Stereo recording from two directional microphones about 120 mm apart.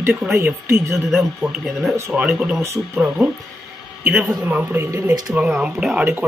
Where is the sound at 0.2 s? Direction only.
10° right (ahead or behind).